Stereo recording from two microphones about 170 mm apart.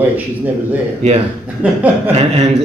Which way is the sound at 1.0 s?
40° right (ahead or behind).